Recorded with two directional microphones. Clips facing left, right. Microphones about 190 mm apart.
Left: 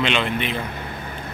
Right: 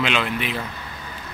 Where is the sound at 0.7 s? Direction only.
55° left (ahead or behind).